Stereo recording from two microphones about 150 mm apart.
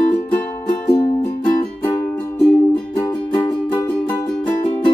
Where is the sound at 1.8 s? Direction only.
15° left (ahead or behind).